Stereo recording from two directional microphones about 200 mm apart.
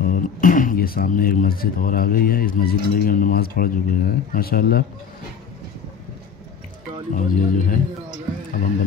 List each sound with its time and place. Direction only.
0.0 s speech: 45° left (ahead or behind)
7.2 s speech: 40° left (ahead or behind)